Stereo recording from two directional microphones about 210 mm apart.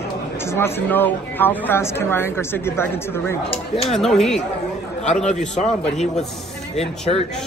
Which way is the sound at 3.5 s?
25° left (ahead or behind).